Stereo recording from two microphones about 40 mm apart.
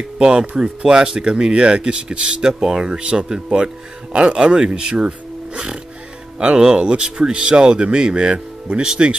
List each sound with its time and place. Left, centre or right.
0.2 s speech: right